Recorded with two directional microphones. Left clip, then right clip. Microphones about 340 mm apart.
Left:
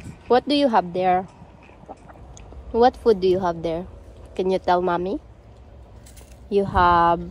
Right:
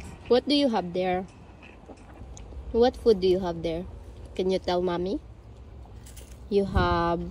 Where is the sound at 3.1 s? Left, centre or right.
Centre.